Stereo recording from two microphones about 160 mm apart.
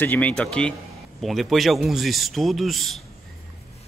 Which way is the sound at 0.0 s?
10° left (ahead or behind).